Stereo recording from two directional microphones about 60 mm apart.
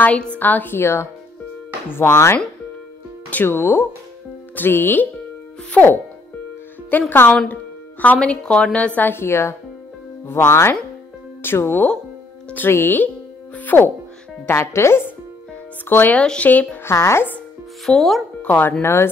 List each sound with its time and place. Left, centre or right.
0.4 s speech: left
0.7 s speech: left
3.4 s speech: left
6.9 s speech: left
8.2 s a woman's voice: centre
9.1 s speech: left
13.6 s music: left
14.4 s speech: left
16.2 s speech: centre
16.9 s speech: left
17.8 s speech: centre
18.4 s speech: left
18.8 s speech: left